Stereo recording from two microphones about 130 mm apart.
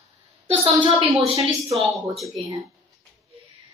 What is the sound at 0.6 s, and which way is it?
Speech, 45° right (ahead or behind).